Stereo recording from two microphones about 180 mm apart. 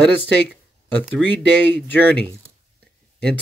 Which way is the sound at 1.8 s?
10° left (ahead or behind).